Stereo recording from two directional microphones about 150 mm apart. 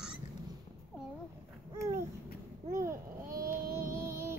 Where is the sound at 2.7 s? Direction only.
20° right (ahead or behind).